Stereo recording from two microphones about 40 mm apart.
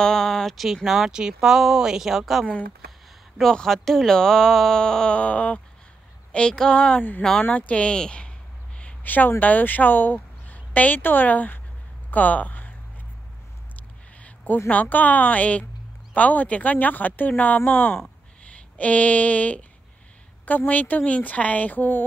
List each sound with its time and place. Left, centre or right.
0.0 s a sound: centre
0.8 s speech: centre
3.6 s speech: centre
5.1 s a woman's voice: left
6.3 s speech: left
7.0 s a woman's voice: left
9.0 s speech: left
14.2 s a woman's voice: left